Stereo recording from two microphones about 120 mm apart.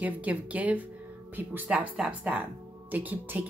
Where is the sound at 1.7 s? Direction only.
5° right (ahead or behind).